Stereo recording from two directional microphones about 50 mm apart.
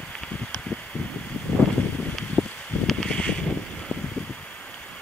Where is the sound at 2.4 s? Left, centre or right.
Centre.